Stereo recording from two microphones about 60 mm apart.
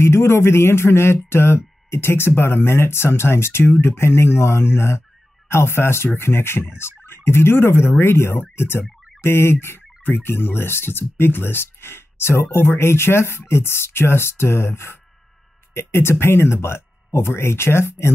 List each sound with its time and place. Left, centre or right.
0.0 s speech: left
6.8 s fowl: left
8.0 s speech: left